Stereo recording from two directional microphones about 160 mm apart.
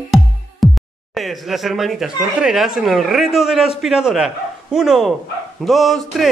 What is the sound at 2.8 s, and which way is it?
Speech, centre (ahead or behind).